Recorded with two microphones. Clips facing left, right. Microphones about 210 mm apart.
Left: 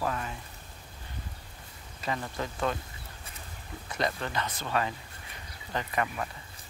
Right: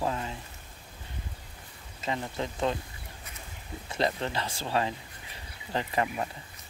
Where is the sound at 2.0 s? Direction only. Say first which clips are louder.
Right 1 dB; 20° right (ahead or behind).